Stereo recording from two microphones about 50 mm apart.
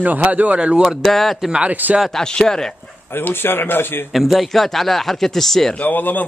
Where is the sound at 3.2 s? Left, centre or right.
Left.